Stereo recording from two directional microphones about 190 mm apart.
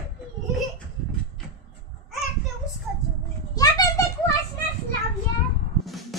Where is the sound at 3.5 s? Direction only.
20° left (ahead or behind).